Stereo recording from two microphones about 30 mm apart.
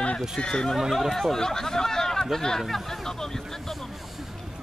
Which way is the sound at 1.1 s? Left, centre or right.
Centre.